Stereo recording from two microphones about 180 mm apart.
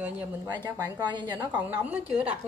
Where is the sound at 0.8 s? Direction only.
20° right (ahead or behind).